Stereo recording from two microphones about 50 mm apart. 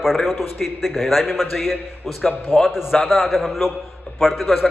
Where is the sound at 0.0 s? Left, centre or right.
Centre.